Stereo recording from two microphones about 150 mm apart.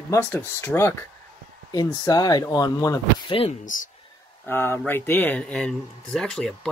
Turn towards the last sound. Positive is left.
turn(degrees=5)  # may be behind; listen again after turning